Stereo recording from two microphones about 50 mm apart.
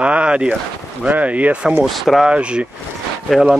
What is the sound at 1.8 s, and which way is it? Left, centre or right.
Speech, centre.